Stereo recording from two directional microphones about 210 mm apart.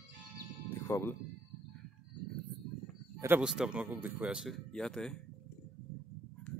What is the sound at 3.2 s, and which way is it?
A man's voice, 5° right (ahead or behind).